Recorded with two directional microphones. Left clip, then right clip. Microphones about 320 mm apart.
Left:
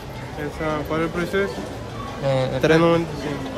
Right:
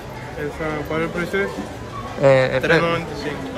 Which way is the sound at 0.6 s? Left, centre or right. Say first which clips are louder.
Left 1 dB; centre.